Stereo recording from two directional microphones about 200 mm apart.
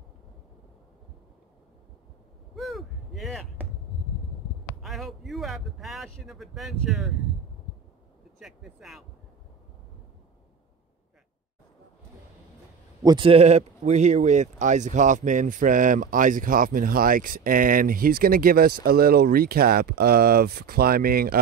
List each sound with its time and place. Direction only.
2.5 s a sound: centre (ahead or behind)
4.8 s speech: centre (ahead or behind)
8.4 s speech: centre (ahead or behind)
13.0 s speech: 25° right (ahead or behind); by 21.4 s 50° right (ahead or behind)